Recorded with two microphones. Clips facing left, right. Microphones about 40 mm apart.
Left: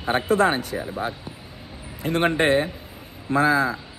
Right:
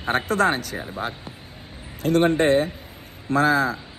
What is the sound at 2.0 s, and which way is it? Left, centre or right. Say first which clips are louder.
A man's voice: right 2 dB; left.